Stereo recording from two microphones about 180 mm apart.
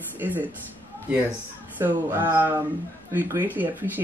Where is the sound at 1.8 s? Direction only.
10° right (ahead or behind).